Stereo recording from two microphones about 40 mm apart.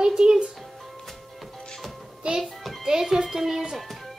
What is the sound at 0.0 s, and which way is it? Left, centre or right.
Music, centre.